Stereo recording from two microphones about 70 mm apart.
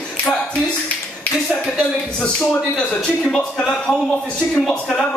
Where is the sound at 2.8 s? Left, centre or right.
Centre.